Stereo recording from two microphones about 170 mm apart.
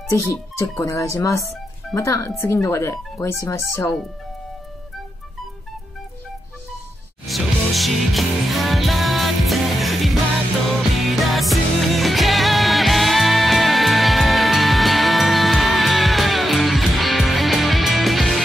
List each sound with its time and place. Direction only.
0.1 s speech: 15° left (ahead or behind)
7.2 s music: centre (ahead or behind)